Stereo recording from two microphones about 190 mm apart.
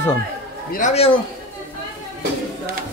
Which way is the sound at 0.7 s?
40° left (ahead or behind).